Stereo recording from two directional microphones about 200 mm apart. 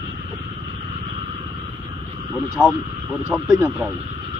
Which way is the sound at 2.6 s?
5° right (ahead or behind).